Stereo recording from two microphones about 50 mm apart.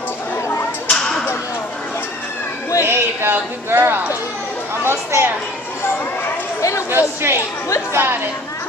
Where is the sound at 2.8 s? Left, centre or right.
Right.